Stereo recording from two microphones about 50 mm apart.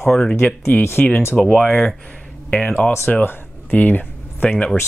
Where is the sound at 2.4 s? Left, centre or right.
Left.